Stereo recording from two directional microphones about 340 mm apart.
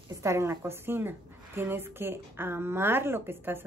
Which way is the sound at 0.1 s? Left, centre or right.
Centre.